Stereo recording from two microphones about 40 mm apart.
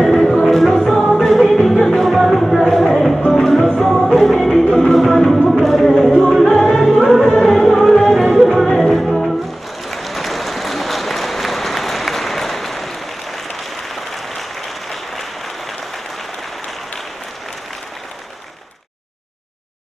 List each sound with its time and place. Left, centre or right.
0.0 s music: centre
0.9 s music: centre
1.2 s music: centre
9.8 s applause: centre
13.9 s applause: centre